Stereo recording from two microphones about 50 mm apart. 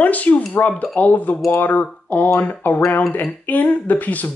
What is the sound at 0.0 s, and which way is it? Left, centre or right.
Speech, left.